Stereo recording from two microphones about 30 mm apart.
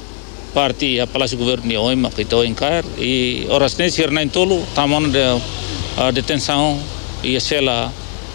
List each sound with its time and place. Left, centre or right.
0.6 s speech: right